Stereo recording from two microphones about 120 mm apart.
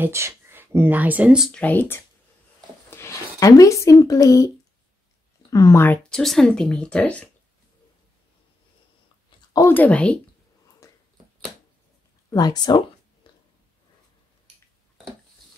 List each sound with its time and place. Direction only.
0.0 s speech: 20° right (ahead or behind)
1.5 s speech: 15° left (ahead or behind); by 4.5 s 30° left (ahead or behind)
5.5 s speech: 25° left (ahead or behind)
5.9 s speech: 5° left (ahead or behind)
9.5 s speech: 25° left (ahead or behind)
9.8 s speech: 10° left (ahead or behind)
10.8 s a sound: 25° left (ahead or behind)
12.3 s speech: 35° left (ahead or behind)